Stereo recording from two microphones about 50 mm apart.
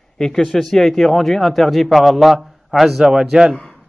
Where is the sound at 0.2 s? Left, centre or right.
Centre.